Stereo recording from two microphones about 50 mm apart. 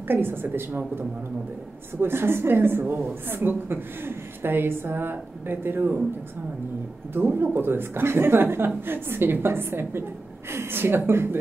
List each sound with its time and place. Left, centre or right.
0.1 s speech: right
7.2 s speech: right